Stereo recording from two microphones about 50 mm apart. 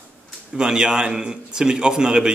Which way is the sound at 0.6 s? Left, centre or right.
Centre.